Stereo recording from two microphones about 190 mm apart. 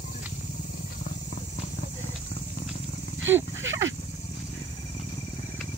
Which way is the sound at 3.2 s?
80° right.